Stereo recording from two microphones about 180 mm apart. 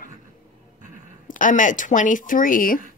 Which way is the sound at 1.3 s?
45° left (ahead or behind).